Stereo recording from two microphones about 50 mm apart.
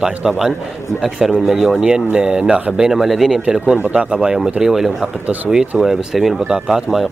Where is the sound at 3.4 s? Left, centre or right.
Centre.